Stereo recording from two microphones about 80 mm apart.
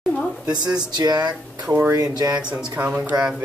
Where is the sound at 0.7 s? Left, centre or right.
Right.